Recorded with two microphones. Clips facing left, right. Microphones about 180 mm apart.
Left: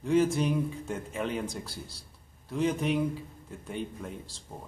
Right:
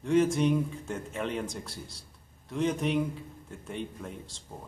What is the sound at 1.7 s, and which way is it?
Speech, 30° left (ahead or behind).